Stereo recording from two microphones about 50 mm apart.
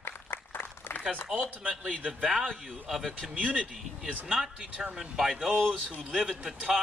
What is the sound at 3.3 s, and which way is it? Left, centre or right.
Speech, right.